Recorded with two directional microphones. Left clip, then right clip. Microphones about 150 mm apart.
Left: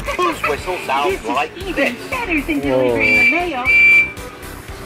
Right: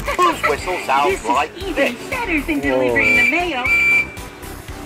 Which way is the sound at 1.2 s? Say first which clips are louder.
Right 2 dB; 60° right (ahead or behind).